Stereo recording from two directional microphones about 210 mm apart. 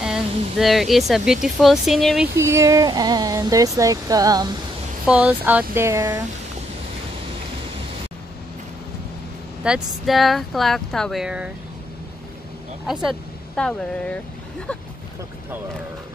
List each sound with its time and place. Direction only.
0.0 s speech: centre (ahead or behind)
2.3 s speech: 15° right (ahead or behind)
5.0 s speech: 5° right (ahead or behind)
9.6 s speech: 5° right (ahead or behind)
12.8 s speech: centre (ahead or behind)